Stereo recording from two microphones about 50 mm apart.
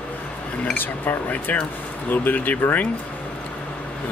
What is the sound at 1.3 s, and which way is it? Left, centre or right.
Speech, left.